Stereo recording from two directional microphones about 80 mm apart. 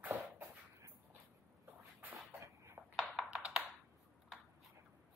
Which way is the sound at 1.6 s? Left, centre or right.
Right.